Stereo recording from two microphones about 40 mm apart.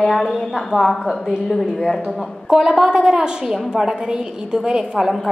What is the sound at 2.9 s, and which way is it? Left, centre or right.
A woman's voice, centre.